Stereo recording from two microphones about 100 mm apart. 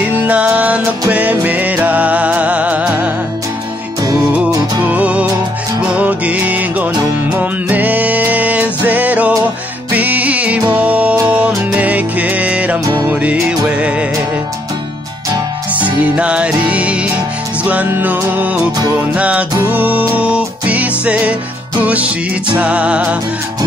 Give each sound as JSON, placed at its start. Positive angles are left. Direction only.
{"t": 0.1, "sound": "music", "side_deg": -15}
{"t": 4.8, "sound": "music", "side_deg": -15}
{"t": 15.7, "sound": "music", "side_deg": -15}